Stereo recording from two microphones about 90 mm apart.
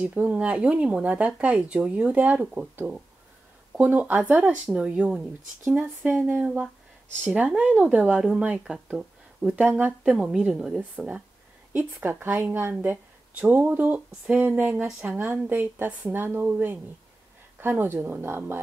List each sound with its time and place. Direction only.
0.0 s a woman's voice: 15° right (ahead or behind)